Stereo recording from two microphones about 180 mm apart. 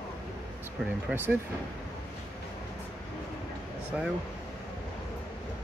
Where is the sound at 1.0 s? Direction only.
10° right (ahead or behind).